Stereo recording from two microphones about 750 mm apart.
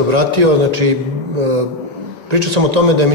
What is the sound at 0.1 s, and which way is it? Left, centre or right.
Speech, right.